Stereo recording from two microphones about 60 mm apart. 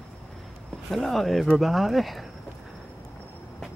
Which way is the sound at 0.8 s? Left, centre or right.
Centre.